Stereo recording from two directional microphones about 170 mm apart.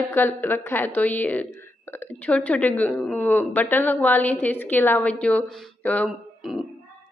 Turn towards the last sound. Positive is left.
turn(degrees=5)  # may be behind; listen again after turning